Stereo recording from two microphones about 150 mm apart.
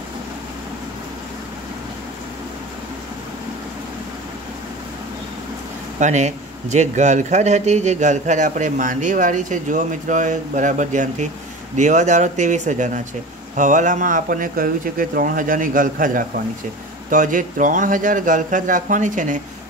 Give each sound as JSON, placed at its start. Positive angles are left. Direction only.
{"t": 5.9, "sound": "speech", "side_deg": -50}